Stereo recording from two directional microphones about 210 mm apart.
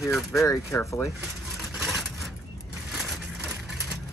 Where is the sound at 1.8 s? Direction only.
5° right (ahead or behind).